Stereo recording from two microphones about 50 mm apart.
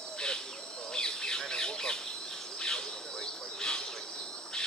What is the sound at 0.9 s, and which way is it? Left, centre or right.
Bird, centre.